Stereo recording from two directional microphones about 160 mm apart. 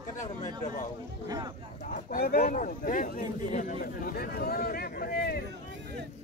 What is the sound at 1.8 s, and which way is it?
Speech, 55° left (ahead or behind).